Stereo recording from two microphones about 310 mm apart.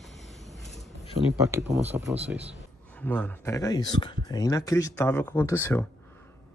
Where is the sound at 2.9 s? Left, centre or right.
Centre.